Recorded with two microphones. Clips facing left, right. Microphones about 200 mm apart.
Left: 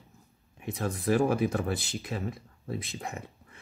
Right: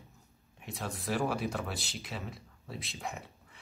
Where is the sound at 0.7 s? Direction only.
50° left (ahead or behind).